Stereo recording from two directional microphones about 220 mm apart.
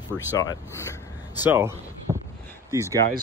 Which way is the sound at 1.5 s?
10° right (ahead or behind).